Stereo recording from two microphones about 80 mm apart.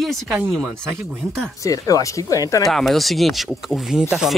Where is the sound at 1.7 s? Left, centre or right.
Left.